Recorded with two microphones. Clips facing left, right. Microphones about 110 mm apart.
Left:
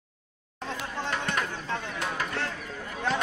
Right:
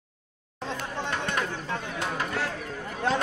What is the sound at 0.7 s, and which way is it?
Chatter, 15° right (ahead or behind).